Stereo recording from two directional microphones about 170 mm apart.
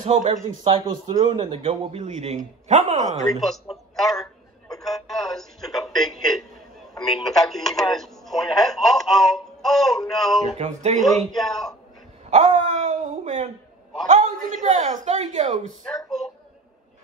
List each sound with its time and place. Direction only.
0.0 s a man's voice: 45° right (ahead or behind)
0.7 s a man's voice: 30° right (ahead or behind)
2.0 s a man's voice: 45° right (ahead or behind)
3.3 s a man's voice: centre (ahead or behind)
4.7 s a sound: centre (ahead or behind)
6.9 s speech: centre (ahead or behind)
10.6 s a man's voice: 40° right (ahead or behind)
11.0 s speech: centre (ahead or behind)
12.3 s a sound: 40° right (ahead or behind)
14.0 s a man's voice: 45° right (ahead or behind)